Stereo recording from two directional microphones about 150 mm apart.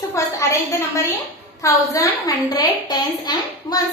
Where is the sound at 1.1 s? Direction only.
20° left (ahead or behind).